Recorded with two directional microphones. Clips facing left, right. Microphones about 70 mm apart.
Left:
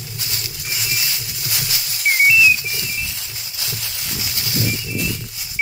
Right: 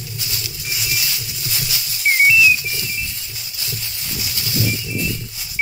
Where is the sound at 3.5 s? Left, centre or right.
Left.